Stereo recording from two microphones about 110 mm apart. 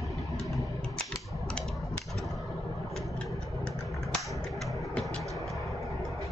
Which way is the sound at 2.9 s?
5° left (ahead or behind).